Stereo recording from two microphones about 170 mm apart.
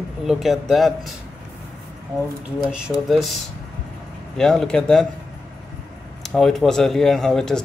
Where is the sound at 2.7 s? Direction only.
Centre (ahead or behind).